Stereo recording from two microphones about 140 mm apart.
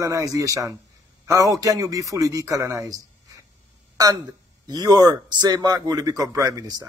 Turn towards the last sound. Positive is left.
turn(degrees=-25)  # may be behind; listen again after turning